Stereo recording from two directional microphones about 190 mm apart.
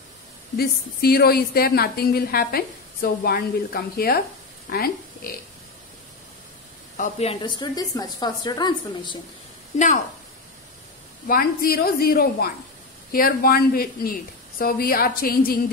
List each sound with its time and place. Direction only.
0.6 s a woman's voice: 55° left (ahead or behind)
7.0 s a woman's voice: 35° left (ahead or behind)
11.2 s a woman's voice: 50° left (ahead or behind)